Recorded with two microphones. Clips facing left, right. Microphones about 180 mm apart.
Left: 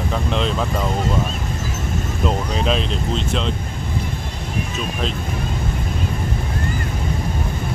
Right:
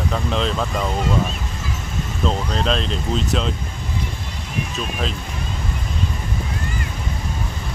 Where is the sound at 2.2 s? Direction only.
5° left (ahead or behind).